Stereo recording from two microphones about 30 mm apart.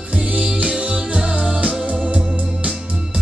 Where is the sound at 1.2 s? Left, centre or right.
Right.